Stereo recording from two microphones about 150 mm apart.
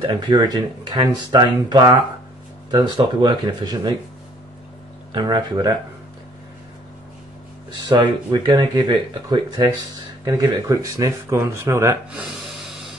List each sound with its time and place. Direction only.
0.0 s speech: 30° right (ahead or behind)
5.1 s speech: 30° right (ahead or behind)
8.0 s speech: 30° right (ahead or behind)
10.2 s speech: 20° right (ahead or behind); by 12.9 s centre (ahead or behind)